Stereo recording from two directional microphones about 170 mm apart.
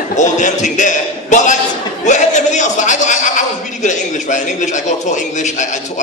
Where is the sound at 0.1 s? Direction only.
45° left (ahead or behind).